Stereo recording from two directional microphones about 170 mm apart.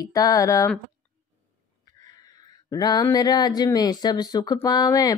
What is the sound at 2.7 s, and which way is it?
Speech, 25° left (ahead or behind).